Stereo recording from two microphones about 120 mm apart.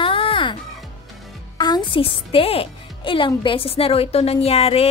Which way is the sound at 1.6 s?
40° left (ahead or behind).